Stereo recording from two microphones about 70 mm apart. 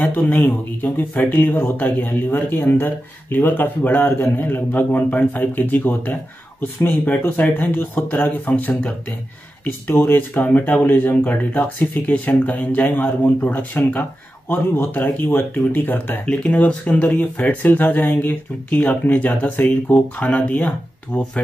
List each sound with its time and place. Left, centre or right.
0.1 s speech: left